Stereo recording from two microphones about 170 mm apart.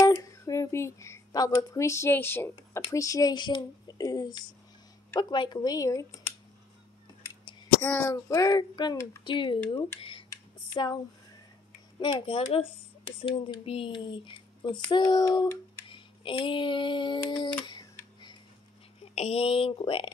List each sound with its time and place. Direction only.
0.0 s speech: 20° left (ahead or behind)
7.8 s speech: 15° left (ahead or behind)
10.0 s a sound: 30° left (ahead or behind)
12.0 s speech: 30° left (ahead or behind)
15.9 s a sound: 30° left (ahead or behind)
19.1 s speech: 35° left (ahead or behind)